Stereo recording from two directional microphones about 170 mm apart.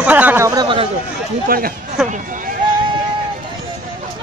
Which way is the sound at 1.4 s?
60° right (ahead or behind).